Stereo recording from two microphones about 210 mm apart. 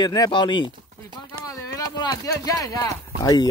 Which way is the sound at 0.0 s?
20° left (ahead or behind).